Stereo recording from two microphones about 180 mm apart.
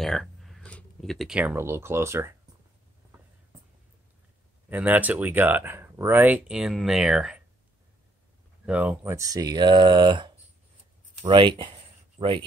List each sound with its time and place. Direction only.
0.0 s speech: centre (ahead or behind); by 2.3 s 15° right (ahead or behind)
4.6 s speech: 10° right (ahead or behind)
8.6 s speech: 5° right (ahead or behind); by 12.4 s 30° right (ahead or behind)